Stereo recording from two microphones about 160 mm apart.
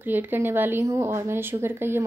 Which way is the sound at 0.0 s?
10° right (ahead or behind).